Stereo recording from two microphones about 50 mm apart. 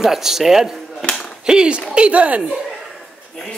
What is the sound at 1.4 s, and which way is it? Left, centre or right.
Speech, centre.